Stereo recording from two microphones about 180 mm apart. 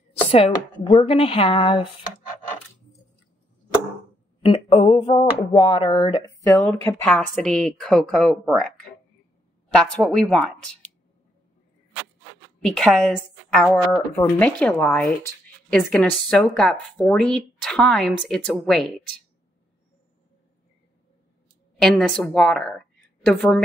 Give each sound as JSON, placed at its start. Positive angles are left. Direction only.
{"t": 0.3, "sound": "speech", "side_deg": 30}
{"t": 4.4, "sound": "speech", "side_deg": 30}
{"t": 6.7, "sound": "a woman's voice", "side_deg": 10}
{"t": 9.8, "sound": "a woman's voice", "side_deg": 5}
{"t": 12.6, "sound": "a woman's voice", "side_deg": 5}
{"t": 21.7, "sound": "a woman's voice", "side_deg": 5}